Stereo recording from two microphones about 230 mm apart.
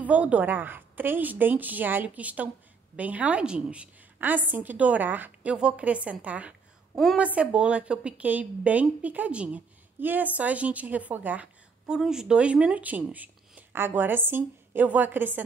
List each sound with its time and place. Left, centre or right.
0.0 s a woman's voice: centre